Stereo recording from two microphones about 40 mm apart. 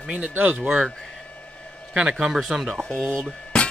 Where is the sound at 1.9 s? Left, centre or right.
Right.